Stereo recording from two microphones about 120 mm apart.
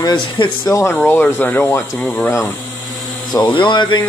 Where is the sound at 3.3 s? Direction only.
40° left (ahead or behind).